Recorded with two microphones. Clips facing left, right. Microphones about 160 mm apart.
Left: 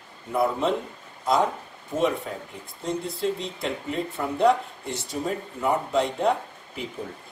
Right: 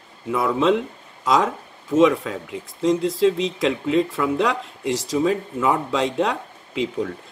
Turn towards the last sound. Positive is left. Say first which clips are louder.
# right 10 dB
turn(degrees=-90)